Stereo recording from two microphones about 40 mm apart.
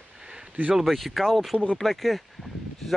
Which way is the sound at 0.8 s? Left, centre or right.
Centre.